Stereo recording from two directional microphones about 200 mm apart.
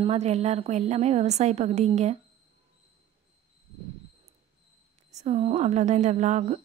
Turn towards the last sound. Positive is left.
turn(degrees=-35)  # may be behind; listen again after turning